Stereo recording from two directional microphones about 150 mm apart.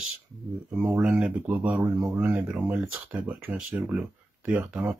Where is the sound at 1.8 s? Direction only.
25° right (ahead or behind).